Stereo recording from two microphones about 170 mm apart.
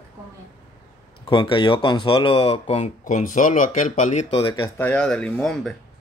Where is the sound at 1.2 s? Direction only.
30° left (ahead or behind).